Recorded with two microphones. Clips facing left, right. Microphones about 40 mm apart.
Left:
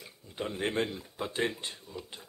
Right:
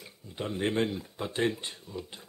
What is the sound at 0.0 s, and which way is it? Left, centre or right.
Speech, centre.